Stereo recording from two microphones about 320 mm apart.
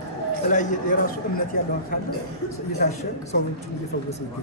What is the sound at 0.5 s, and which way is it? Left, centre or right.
A man's voice, left.